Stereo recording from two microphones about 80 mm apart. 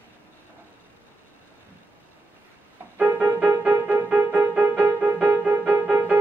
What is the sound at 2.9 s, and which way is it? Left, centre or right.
Music, right.